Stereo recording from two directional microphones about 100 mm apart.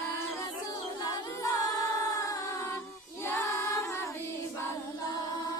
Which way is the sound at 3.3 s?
30° left (ahead or behind).